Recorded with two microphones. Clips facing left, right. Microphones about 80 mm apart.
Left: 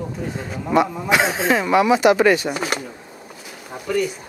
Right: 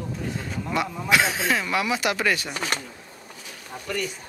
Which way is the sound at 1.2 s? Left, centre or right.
Left.